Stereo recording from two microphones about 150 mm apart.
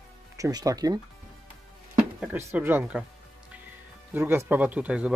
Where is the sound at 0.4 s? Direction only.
25° right (ahead or behind).